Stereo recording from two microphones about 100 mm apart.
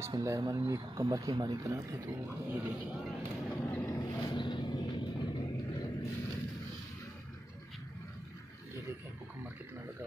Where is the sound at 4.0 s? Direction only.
45° left (ahead or behind).